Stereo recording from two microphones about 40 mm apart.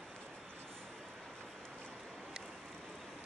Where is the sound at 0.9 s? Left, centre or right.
Centre.